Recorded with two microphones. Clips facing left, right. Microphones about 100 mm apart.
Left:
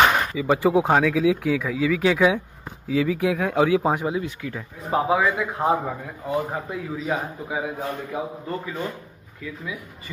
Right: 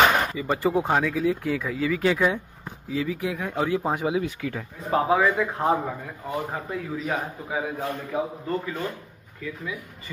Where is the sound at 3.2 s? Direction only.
90° left.